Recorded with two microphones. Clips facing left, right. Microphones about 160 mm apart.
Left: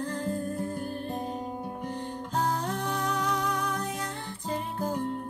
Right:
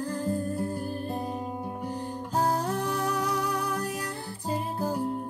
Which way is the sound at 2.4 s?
35° right (ahead or behind).